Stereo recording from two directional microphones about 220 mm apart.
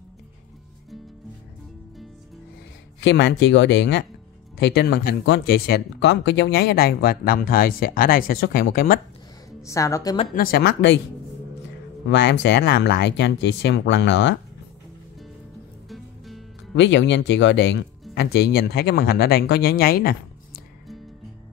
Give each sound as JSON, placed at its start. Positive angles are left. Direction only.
{"t": 3.0, "sound": "speech", "side_deg": 50}
{"t": 9.6, "sound": "a woman's voice", "side_deg": 15}
{"t": 10.3, "sound": "speech", "side_deg": 40}
{"t": 12.1, "sound": "speech", "side_deg": 50}
{"t": 15.9, "sound": "music", "side_deg": 0}
{"t": 16.7, "sound": "speech", "side_deg": 55}